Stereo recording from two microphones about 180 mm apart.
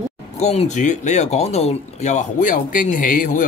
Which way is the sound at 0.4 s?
40° left (ahead or behind).